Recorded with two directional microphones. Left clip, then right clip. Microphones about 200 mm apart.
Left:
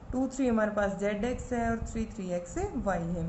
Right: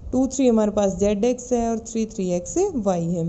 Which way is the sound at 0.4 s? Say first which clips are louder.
Right 9 dB; 45° right (ahead or behind).